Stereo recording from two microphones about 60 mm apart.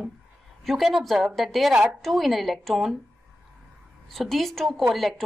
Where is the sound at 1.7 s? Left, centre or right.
Centre.